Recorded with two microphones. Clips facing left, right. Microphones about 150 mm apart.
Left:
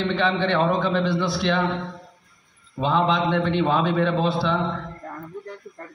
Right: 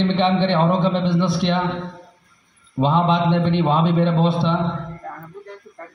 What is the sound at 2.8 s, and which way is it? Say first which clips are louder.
Speech: right 3 dB; 20° right (ahead or behind).